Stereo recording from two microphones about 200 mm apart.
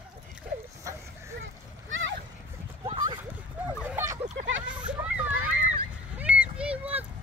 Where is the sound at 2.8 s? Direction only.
20° right (ahead or behind).